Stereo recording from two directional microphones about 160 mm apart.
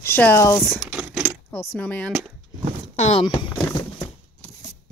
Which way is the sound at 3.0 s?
35° left (ahead or behind).